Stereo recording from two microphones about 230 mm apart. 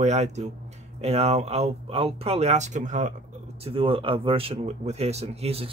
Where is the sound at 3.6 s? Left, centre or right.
Right.